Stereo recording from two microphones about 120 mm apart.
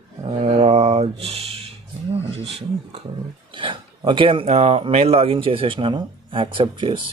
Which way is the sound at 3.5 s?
45° right (ahead or behind).